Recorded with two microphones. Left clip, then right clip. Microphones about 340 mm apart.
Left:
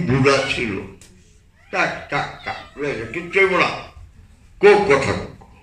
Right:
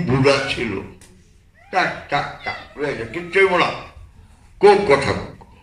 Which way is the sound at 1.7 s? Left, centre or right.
Right.